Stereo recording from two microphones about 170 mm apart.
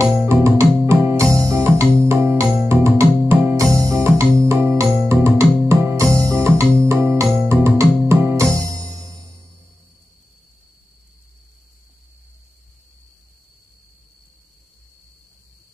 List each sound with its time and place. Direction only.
0.0 s music: 15° right (ahead or behind)